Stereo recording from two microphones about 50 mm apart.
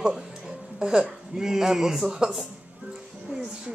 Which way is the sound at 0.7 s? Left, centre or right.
Centre.